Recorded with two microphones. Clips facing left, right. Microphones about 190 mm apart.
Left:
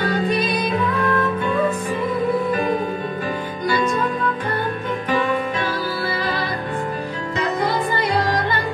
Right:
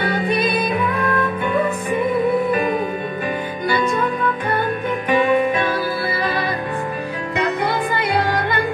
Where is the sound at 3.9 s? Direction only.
55° right (ahead or behind).